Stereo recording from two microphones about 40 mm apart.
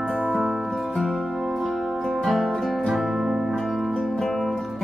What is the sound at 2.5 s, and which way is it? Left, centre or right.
Music, centre.